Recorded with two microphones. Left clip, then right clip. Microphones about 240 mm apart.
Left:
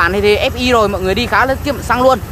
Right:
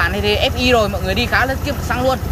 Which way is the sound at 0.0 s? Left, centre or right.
Centre.